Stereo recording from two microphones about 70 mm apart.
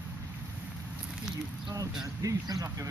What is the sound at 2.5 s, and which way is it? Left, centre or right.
Speech, right.